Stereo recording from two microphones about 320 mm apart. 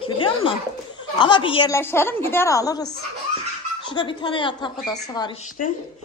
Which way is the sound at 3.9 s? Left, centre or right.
Centre.